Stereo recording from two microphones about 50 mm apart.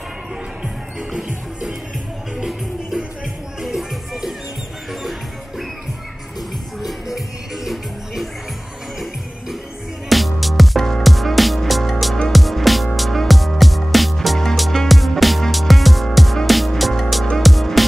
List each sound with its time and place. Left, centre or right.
0.9 s music: centre
6.8 s music: centre
10.0 s music: centre